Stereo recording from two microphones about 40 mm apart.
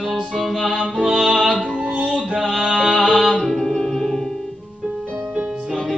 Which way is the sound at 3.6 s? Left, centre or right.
Centre.